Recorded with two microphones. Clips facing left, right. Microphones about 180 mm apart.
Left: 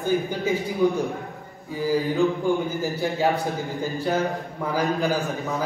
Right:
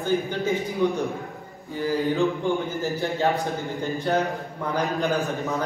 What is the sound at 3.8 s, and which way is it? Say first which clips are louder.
A man's voice: even; centre (ahead or behind).